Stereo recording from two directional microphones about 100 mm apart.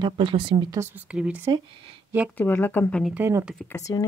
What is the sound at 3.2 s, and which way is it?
Speech, 25° right (ahead or behind).